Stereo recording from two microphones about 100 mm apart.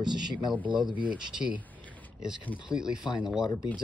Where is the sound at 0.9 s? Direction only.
10° right (ahead or behind).